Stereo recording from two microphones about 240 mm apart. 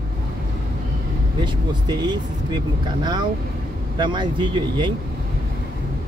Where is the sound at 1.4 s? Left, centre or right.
Centre.